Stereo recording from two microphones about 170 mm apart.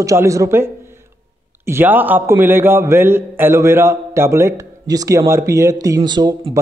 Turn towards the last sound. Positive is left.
turn(degrees=-25)  # may be behind; listen again after turning